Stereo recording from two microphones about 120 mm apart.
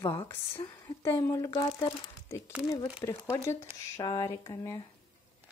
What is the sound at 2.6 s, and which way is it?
Speech, 35° left (ahead or behind).